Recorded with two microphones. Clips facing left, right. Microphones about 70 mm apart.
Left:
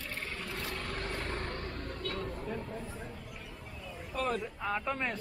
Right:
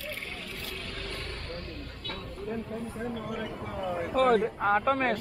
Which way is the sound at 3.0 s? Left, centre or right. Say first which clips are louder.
Right 12 dB; right.